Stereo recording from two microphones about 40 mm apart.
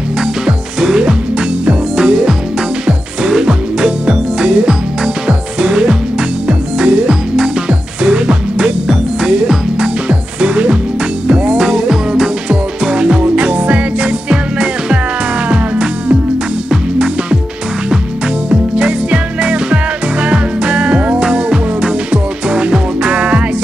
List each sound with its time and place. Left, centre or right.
0.2 s music: centre
10.4 s music: right
11.6 s music: centre; by 14.1 s right
14.3 s music: right
18.5 s music: right